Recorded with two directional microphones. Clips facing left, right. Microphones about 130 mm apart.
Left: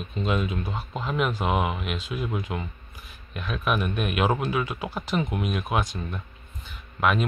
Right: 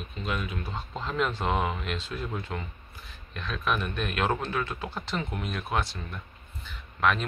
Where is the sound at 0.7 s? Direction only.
10° left (ahead or behind).